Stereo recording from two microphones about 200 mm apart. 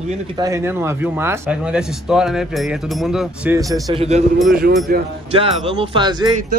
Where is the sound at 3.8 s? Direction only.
30° right (ahead or behind).